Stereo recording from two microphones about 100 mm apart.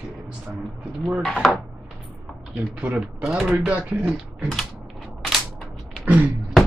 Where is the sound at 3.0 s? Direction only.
5° right (ahead or behind).